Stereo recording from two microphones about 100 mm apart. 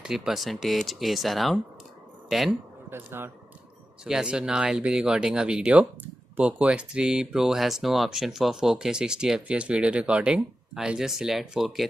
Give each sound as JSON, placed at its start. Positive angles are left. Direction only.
{"t": 0.0, "sound": "speech", "side_deg": -5}
{"t": 2.9, "sound": "speech", "side_deg": -25}
{"t": 4.0, "sound": "speech", "side_deg": -10}